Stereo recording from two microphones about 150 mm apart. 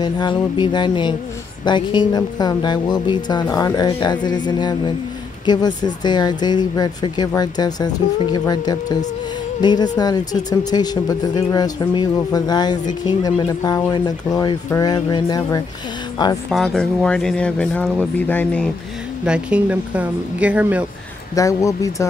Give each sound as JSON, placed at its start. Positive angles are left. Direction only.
{"t": 0.0, "sound": "speech", "side_deg": 30}
{"t": 16.4, "sound": "speech", "side_deg": 0}
{"t": 19.2, "sound": "speech", "side_deg": -5}
{"t": 21.4, "sound": "speech", "side_deg": 20}